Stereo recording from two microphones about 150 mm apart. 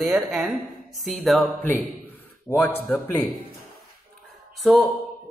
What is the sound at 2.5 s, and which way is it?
Speech, 15° left (ahead or behind).